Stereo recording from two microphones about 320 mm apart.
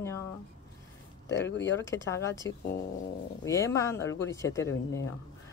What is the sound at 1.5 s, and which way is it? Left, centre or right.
Speech, left.